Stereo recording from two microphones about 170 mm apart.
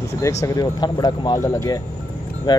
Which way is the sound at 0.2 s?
15° left (ahead or behind).